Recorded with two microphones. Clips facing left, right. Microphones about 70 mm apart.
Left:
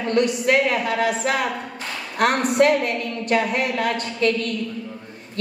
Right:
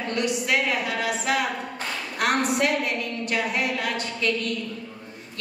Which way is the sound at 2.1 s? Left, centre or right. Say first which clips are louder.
Left 6 dB; left.